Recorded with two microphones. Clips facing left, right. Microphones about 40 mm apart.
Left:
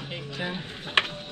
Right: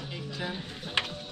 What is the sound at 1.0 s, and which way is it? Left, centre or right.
Music, left.